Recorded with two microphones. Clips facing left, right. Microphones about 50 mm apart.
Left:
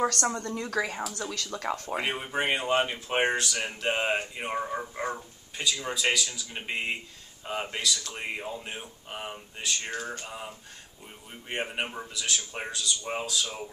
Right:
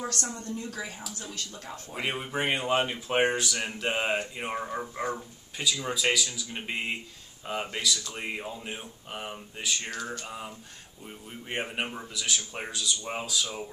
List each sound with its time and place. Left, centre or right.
0.0 s a woman's voice: left
1.1 s speech: left
2.0 s speech: centre
9.8 s a sound: left
10.2 s a sound: centre
11.4 s speech: centre